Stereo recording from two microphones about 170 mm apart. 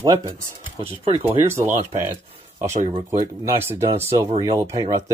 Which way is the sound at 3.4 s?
15° right (ahead or behind).